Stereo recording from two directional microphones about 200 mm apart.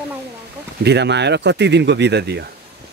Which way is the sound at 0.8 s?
60° right (ahead or behind).